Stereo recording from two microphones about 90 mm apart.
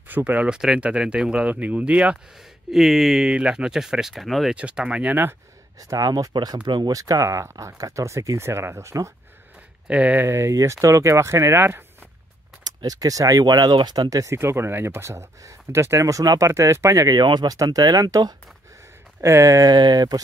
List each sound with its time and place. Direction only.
0.1 s speech: 15° right (ahead or behind)
2.7 s speech: centre (ahead or behind)
4.6 s speech: 10° right (ahead or behind)
5.8 s speech: 45° right (ahead or behind)
6.9 s speech: 40° right (ahead or behind)
9.8 s speech: 15° right (ahead or behind)
10.2 s speech: 30° right (ahead or behind)
12.6 s speech: 45° right (ahead or behind)
17.2 s speech: 55° right (ahead or behind); by 19.7 s 35° right (ahead or behind)
19.7 s speech: 50° right (ahead or behind)